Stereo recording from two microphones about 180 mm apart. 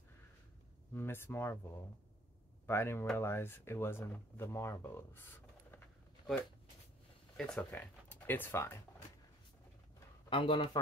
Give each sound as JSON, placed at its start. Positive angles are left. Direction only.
{"t": 0.9, "sound": "speech", "side_deg": 15}
{"t": 2.6, "sound": "speech", "side_deg": 15}
{"t": 7.3, "sound": "speech", "side_deg": 5}
{"t": 10.3, "sound": "speech", "side_deg": 30}